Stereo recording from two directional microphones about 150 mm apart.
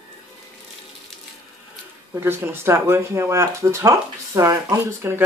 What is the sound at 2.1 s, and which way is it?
Speech, 15° right (ahead or behind).